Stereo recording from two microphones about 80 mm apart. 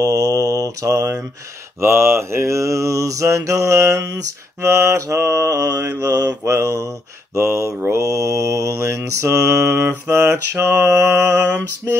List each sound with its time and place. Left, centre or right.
0.0 s mantra: right